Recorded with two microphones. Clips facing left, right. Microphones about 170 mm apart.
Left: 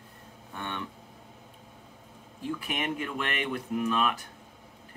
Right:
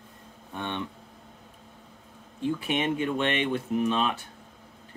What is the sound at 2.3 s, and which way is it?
Speech, 25° right (ahead or behind).